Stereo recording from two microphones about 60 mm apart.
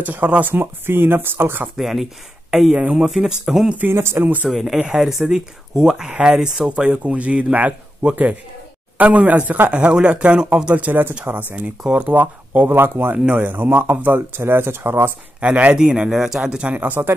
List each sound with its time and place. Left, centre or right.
0.0 s speech: right
1.8 s speech: centre
3.9 s speech: right
4.5 s speech: centre; by 11.1 s right
11.5 s speech: centre
12.1 s speech: right
13.1 s speech: right
15.4 s speech: right
15.8 s speech: centre